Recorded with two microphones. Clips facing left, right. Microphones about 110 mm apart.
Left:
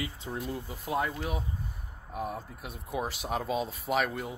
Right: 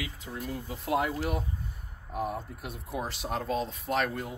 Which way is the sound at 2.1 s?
Centre (ahead or behind).